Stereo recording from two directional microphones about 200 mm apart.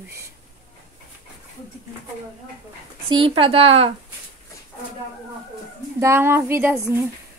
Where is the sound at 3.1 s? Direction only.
25° right (ahead or behind).